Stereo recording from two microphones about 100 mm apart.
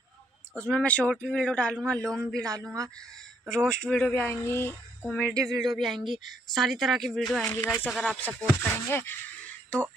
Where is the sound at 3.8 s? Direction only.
10° left (ahead or behind).